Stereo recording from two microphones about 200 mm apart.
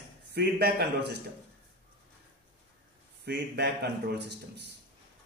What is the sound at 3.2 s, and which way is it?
A man's voice, 55° right (ahead or behind).